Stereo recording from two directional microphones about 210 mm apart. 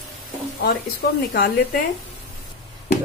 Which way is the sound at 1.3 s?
45° left (ahead or behind).